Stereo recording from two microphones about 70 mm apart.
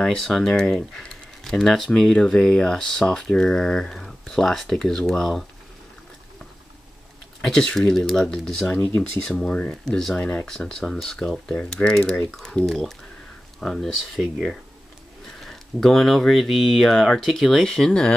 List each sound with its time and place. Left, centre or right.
0.0 s speech: centre
7.4 s speech: centre
12.1 s speech: centre
12.6 s speech: centre